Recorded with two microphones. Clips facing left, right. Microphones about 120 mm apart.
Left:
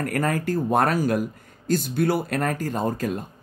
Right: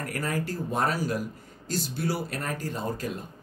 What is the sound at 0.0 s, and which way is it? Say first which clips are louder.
Speech: left 6 dB; 50° left (ahead or behind).